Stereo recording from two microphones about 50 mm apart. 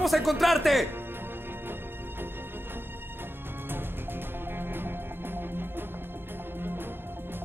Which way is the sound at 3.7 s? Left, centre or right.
Right.